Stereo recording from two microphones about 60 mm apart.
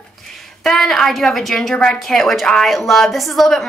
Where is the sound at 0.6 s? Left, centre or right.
Centre.